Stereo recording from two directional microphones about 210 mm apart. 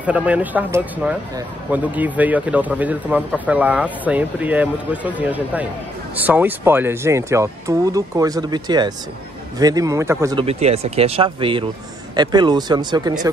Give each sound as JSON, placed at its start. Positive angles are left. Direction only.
{"t": 0.0, "sound": "speech", "side_deg": -5}
{"t": 10.4, "sound": "speech", "side_deg": -30}